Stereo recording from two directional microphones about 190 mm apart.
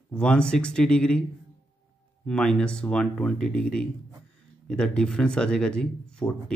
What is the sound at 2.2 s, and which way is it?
Speech, 5° left (ahead or behind).